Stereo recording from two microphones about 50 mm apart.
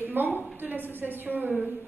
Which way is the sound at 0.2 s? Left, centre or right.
Right.